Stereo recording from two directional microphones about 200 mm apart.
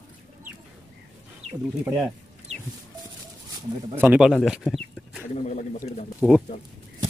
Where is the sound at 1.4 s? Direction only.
30° right (ahead or behind).